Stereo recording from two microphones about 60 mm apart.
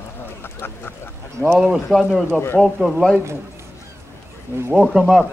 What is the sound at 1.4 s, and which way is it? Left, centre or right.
Speech, left.